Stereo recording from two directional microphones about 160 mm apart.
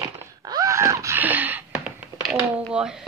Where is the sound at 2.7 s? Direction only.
5° right (ahead or behind).